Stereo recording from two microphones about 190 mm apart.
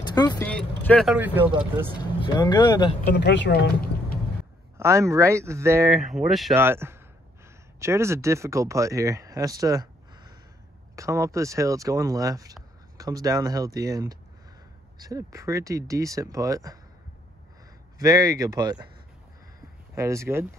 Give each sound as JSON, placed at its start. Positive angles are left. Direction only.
{"t": 0.0, "sound": "speech", "side_deg": 20}
{"t": 0.5, "sound": "vehicle", "side_deg": 5}
{"t": 1.1, "sound": "speech", "side_deg": -10}
{"t": 2.2, "sound": "speech", "side_deg": 25}
{"t": 3.2, "sound": "speech", "side_deg": 65}
{"t": 4.7, "sound": "speech", "side_deg": -15}
{"t": 5.9, "sound": "speech", "side_deg": 0}
{"t": 6.5, "sound": "speech", "side_deg": -10}
{"t": 17.9, "sound": "speech", "side_deg": -20}
{"t": 20.0, "sound": "speech", "side_deg": -15}